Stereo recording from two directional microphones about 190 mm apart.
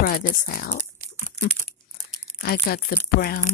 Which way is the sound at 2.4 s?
55° left (ahead or behind).